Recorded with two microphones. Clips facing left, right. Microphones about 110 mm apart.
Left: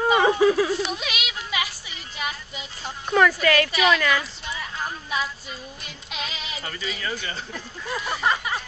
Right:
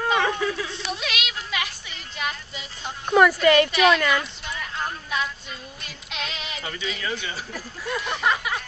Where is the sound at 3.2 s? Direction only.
5° right (ahead or behind).